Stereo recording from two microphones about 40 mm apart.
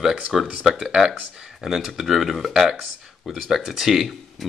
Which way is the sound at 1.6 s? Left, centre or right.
Centre.